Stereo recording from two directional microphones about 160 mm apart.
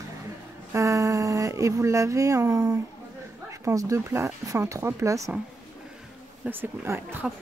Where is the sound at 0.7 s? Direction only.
20° right (ahead or behind).